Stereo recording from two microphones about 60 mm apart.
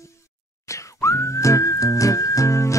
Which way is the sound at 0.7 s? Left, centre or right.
Left.